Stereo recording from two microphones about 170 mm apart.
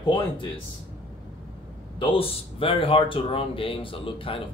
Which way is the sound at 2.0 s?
30° left (ahead or behind).